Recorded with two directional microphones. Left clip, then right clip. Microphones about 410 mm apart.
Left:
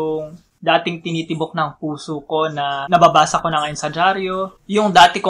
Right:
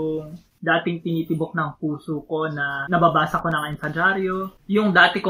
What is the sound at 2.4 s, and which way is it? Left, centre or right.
Speech, centre.